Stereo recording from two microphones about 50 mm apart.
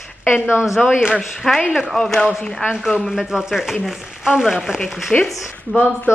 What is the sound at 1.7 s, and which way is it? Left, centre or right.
Speech, centre.